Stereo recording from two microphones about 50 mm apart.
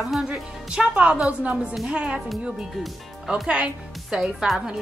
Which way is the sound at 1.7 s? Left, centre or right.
Centre.